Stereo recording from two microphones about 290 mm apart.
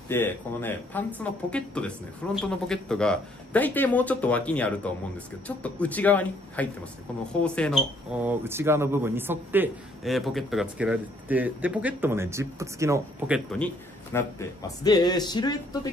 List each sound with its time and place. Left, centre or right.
0.1 s speech: centre
14.1 s speech: centre